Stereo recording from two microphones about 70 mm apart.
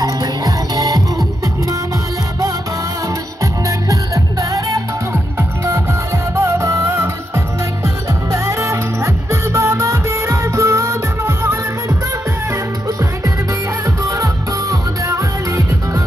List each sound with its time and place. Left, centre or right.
0.0 s music: right
3.6 s music: right
6.4 s music: right
6.9 s music: right
13.8 s music: right